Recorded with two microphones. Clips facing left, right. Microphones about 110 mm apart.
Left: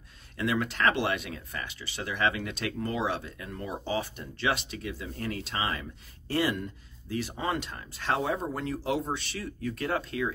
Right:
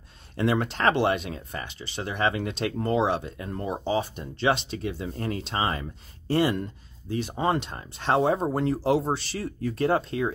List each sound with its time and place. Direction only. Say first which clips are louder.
0.4 s speech: right 3 dB; 30° right (ahead or behind)